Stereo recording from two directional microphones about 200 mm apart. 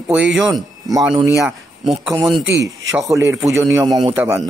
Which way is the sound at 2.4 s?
65° right (ahead or behind).